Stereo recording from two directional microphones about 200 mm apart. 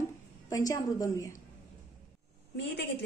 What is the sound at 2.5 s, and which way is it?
Speech, 60° left (ahead or behind).